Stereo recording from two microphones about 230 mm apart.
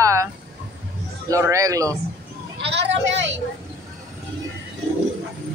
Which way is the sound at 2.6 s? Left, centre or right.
Right.